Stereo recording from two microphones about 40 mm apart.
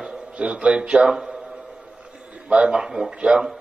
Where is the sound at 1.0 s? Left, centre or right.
Centre.